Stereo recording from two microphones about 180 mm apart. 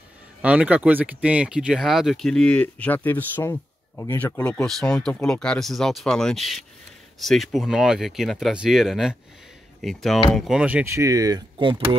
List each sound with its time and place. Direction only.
0.4 s speech: 5° right (ahead or behind); by 12.0 s 25° right (ahead or behind)